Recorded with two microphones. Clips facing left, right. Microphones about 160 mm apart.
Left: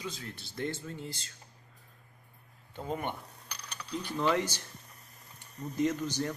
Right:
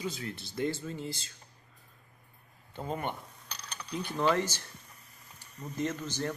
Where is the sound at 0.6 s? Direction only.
10° right (ahead or behind).